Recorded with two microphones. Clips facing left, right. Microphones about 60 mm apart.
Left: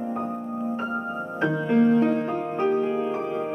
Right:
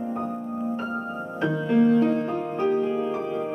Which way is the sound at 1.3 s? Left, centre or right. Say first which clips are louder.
Even; left.